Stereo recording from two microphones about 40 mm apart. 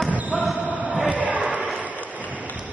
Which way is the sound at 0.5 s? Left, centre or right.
Right.